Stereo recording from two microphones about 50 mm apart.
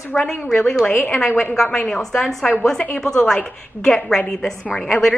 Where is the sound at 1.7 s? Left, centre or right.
Centre.